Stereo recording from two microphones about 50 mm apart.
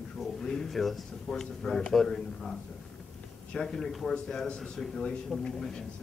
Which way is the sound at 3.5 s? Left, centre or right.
Centre.